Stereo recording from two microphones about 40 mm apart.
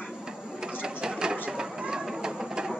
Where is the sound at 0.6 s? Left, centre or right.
Centre.